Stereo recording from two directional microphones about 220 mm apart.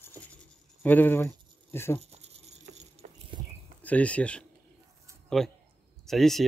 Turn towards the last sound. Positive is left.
turn(degrees=0)  # may be behind; listen again after turning